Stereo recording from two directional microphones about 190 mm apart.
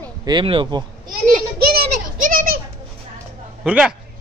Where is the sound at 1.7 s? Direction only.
50° right (ahead or behind).